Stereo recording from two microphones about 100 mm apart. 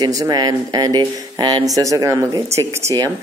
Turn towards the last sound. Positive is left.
turn(degrees=-30)  # may be behind; listen again after turning